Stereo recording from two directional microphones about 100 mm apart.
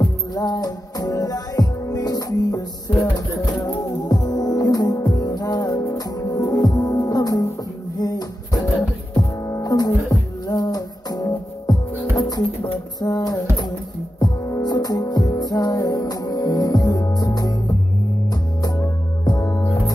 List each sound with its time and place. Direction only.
0.0 s music: 35° left (ahead or behind)